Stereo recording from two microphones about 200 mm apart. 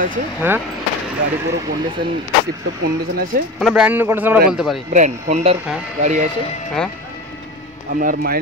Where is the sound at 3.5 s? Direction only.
5° right (ahead or behind).